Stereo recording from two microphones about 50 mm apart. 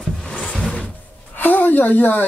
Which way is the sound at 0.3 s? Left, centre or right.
Centre.